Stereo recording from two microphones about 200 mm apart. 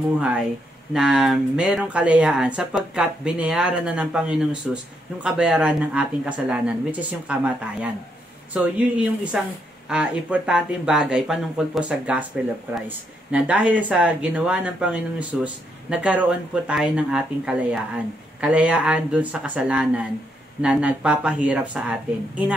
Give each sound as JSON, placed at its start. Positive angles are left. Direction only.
{"t": 0.9, "sound": "speech", "side_deg": -5}
{"t": 13.3, "sound": "speech", "side_deg": -5}